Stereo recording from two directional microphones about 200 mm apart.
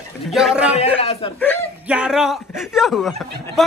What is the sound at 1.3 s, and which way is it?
Speech, 10° left (ahead or behind).